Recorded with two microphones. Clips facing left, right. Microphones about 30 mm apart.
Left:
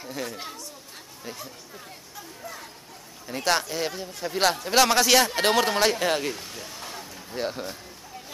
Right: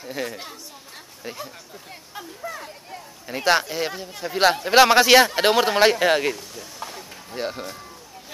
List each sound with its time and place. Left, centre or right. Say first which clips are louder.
0.1 s speech: right 4 dB; centre
6.3 s speech: even; centre
6.8 s a sound: right 2 dB; centre